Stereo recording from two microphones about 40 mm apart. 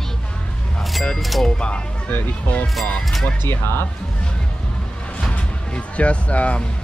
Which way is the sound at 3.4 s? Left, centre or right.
Left.